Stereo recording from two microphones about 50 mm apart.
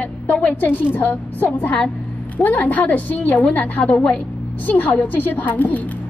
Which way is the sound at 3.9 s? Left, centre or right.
Centre.